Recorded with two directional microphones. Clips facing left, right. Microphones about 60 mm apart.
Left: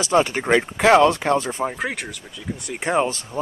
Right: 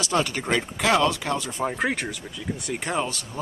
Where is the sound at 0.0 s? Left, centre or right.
Left.